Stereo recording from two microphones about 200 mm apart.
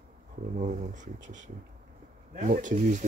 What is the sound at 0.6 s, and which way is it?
Speech, 40° right (ahead or behind).